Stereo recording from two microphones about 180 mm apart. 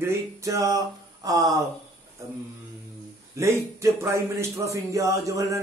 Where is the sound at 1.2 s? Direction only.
20° right (ahead or behind).